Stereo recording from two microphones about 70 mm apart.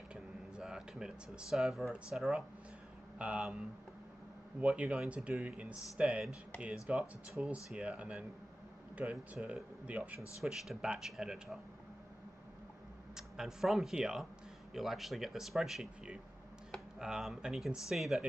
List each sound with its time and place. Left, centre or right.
0.1 s a sound: centre
2.1 s speech: centre
3.2 s speech: centre
4.6 s speech: centre
10.4 s speech: centre
13.1 s speech: centre
17.0 s speech: centre